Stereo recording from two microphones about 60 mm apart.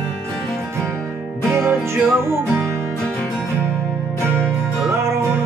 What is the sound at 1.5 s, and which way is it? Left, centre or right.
Music, right.